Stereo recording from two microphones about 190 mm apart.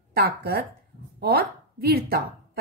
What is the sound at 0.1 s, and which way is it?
Speech, 55° right (ahead or behind).